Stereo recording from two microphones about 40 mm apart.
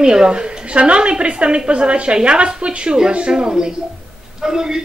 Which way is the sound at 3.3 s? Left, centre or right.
Centre.